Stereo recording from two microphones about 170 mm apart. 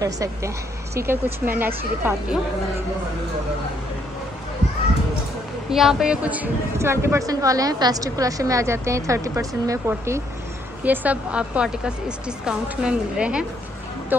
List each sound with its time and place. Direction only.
0.0 s a woman's voice: 20° right (ahead or behind)
5.7 s a woman's voice: centre (ahead or behind)